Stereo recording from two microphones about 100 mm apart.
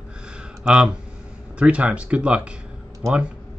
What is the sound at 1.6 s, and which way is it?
Speech, 10° right (ahead or behind).